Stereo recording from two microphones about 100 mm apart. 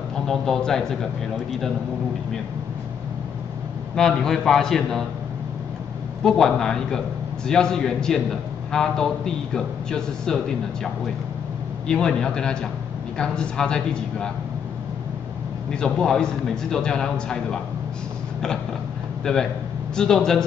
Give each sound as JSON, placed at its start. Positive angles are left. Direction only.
{"t": 0.3, "sound": "a man's voice", "side_deg": 5}
{"t": 3.9, "sound": "a man's voice", "side_deg": 5}
{"t": 6.2, "sound": "a man's voice", "side_deg": 5}
{"t": 11.9, "sound": "a man's voice", "side_deg": 5}
{"t": 15.7, "sound": "a man's voice", "side_deg": 10}
{"t": 19.3, "sound": "a man's voice", "side_deg": 5}